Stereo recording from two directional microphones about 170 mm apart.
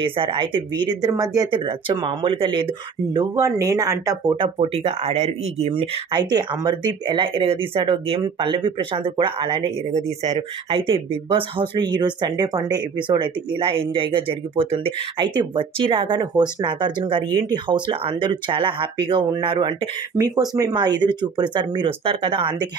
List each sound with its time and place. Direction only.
0.0 s speech: 30° right (ahead or behind)
4.6 s speech: 35° right (ahead or behind)